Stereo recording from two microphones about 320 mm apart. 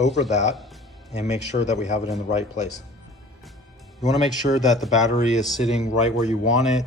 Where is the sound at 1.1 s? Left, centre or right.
Left.